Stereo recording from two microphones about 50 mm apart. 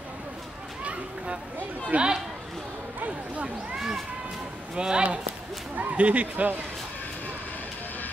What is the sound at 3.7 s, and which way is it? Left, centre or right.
Run, centre.